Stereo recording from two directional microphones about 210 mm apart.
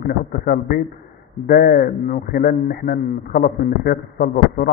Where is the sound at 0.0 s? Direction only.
45° left (ahead or behind).